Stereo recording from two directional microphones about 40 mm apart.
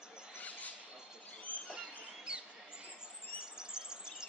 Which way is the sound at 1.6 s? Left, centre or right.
Right.